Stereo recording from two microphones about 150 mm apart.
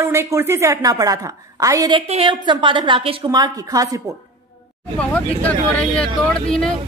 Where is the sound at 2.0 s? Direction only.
40° right (ahead or behind); by 4.0 s 25° right (ahead or behind).